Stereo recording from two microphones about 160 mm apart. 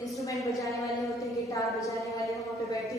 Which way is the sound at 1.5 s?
20° left (ahead or behind).